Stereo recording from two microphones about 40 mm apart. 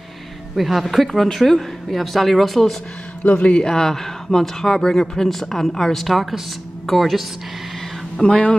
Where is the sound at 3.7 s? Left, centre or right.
Centre.